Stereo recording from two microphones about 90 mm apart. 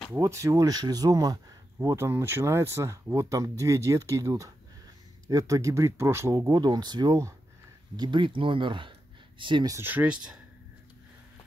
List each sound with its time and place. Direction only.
0.1 s speech: 35° right (ahead or behind)
6.3 s speech: 45° right (ahead or behind); by 9.7 s 65° right (ahead or behind)
9.8 s speech: 20° right (ahead or behind)